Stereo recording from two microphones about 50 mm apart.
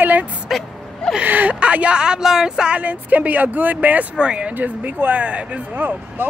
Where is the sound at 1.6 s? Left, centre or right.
Right.